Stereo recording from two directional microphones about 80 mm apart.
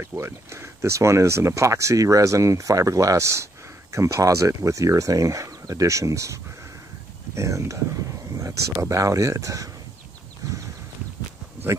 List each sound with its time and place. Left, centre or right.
0.0 s speech: right
8.8 s speech: right